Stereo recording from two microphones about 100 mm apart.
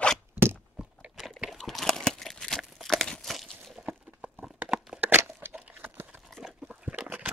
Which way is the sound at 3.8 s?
15° right (ahead or behind).